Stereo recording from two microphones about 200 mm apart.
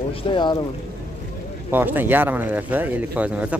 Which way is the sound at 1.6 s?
10° right (ahead or behind).